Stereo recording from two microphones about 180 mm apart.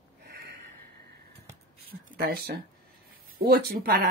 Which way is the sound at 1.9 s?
60° right (ahead or behind).